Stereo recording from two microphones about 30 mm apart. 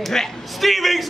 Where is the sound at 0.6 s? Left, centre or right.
Centre.